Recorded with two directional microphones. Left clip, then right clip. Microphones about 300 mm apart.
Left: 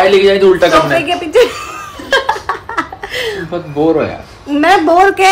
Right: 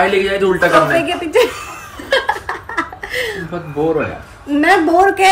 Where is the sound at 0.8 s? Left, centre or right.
Centre.